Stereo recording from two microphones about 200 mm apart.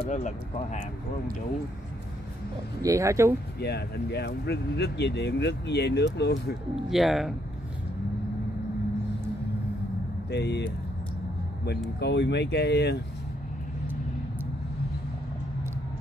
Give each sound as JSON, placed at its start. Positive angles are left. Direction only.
{"t": 2.8, "sound": "speech", "side_deg": -15}
{"t": 3.5, "sound": "speech", "side_deg": 55}
{"t": 6.9, "sound": "speech", "side_deg": 0}
{"t": 10.3, "sound": "speech", "side_deg": 55}
{"t": 12.0, "sound": "speech", "side_deg": 60}